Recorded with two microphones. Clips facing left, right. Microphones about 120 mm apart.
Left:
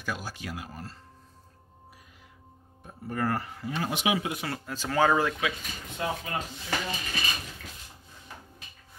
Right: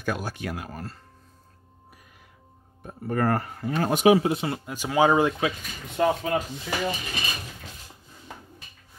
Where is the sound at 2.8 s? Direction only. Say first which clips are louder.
Right 5 dB; 55° right (ahead or behind); by 5.4 s 20° right (ahead or behind).